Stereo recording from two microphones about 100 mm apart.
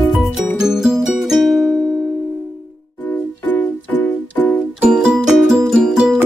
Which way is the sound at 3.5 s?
15° left (ahead or behind).